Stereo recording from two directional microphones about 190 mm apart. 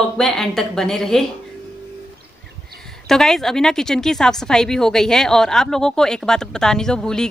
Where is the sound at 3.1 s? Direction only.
Centre (ahead or behind).